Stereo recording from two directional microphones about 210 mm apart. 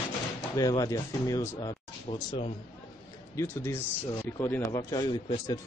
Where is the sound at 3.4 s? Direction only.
15° left (ahead or behind).